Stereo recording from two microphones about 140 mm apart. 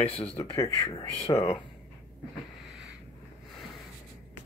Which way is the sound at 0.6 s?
25° left (ahead or behind).